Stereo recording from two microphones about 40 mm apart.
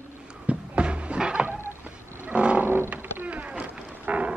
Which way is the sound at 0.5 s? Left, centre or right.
Right.